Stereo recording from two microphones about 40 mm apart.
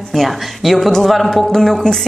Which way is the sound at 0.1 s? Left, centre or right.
Centre.